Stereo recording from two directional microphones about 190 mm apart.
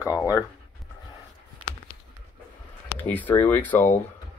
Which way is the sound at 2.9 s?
10° left (ahead or behind).